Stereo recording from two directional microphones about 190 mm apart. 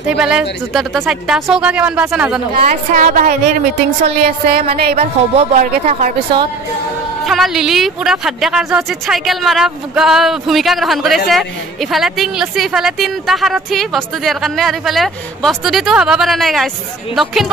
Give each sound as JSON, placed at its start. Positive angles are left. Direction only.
{"t": 0.2, "sound": "a woman's voice", "side_deg": -5}
{"t": 2.6, "sound": "speech", "side_deg": -45}
{"t": 4.9, "sound": "speech", "side_deg": -35}
{"t": 7.2, "sound": "a woman's voice", "side_deg": 0}